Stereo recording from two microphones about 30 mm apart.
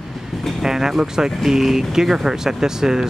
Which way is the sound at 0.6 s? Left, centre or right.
Centre.